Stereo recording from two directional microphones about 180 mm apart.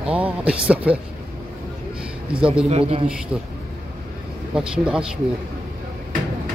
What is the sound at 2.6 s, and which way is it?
Speech, 35° right (ahead or behind).